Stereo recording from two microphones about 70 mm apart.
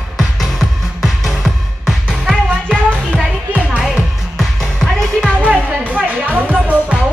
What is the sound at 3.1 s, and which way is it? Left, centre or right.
Music, centre.